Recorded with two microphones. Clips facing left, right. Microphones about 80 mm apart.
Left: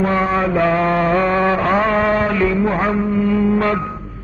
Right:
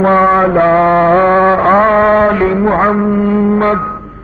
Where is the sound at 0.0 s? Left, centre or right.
Right.